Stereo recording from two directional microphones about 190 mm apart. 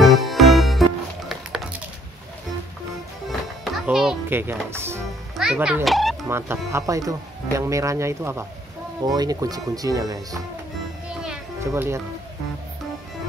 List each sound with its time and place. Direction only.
0.0 s music: centre (ahead or behind)
3.3 s music: centre (ahead or behind)
5.4 s speech: 5° right (ahead or behind)
6.2 s speech: 15° right (ahead or behind)
11.2 s music: 15° right (ahead or behind)